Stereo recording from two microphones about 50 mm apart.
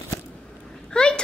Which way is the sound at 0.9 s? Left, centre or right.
Centre.